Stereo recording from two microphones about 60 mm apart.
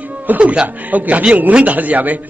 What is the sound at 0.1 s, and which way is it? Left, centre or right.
A man's voice, right.